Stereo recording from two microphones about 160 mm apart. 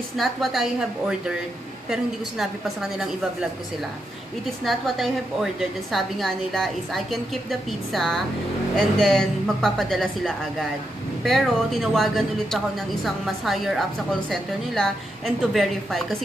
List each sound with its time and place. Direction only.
0.2 s speech: centre (ahead or behind)
4.6 s speech: centre (ahead or behind)